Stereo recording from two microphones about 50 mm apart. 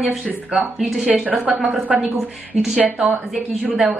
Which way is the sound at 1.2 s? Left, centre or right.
Right.